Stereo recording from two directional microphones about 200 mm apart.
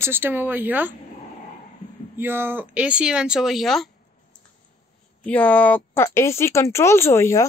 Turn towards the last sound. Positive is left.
turn(degrees=15)  # may be behind; listen again after turning